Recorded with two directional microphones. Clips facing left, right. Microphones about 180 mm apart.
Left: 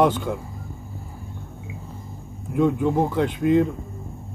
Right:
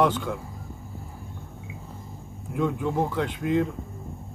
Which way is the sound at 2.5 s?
25° left (ahead or behind).